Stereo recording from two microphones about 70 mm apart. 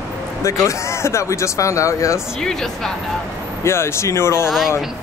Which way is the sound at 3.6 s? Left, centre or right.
Left.